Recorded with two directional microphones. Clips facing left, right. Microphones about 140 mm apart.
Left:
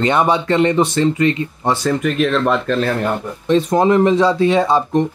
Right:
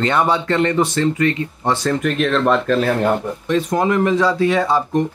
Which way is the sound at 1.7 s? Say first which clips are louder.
Left 1 dB; 5° left (ahead or behind).